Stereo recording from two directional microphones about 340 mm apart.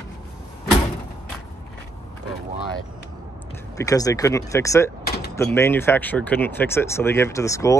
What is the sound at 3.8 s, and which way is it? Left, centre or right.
Speech, centre.